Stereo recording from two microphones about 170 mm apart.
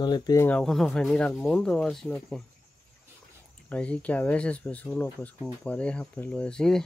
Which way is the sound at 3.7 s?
5° left (ahead or behind).